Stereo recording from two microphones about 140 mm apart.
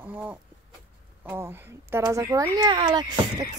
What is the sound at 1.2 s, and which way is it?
Speech, 15° right (ahead or behind).